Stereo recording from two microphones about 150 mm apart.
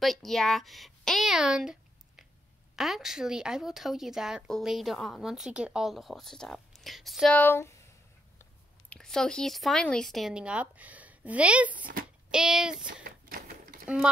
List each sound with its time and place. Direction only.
0.0 s speech: centre (ahead or behind)
7.3 s speech: 15° left (ahead or behind)
8.8 s speech: 5° left (ahead or behind)
11.7 s speech: 70° right (ahead or behind)
12.3 s speech: 5° right (ahead or behind)
12.8 s typewriter: 65° right (ahead or behind)